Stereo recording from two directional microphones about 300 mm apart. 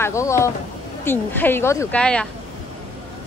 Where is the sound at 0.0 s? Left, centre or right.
Centre.